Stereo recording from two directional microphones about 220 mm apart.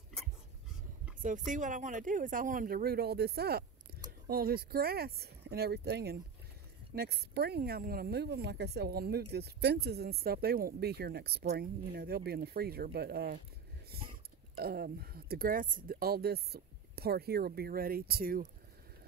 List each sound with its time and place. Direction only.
1.2 s a woman's voice: 35° right (ahead or behind)
14.6 s a woman's voice: 45° right (ahead or behind)